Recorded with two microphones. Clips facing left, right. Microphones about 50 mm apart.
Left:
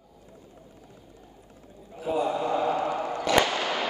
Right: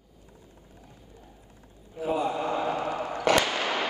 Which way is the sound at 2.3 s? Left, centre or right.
Centre.